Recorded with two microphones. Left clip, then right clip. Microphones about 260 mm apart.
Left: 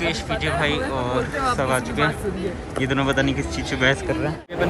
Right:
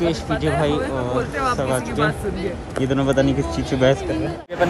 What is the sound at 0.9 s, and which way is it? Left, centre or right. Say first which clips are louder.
Speech: right 1 dB; centre.